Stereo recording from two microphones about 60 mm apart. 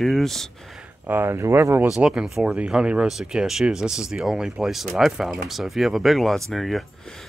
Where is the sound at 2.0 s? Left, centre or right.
Centre.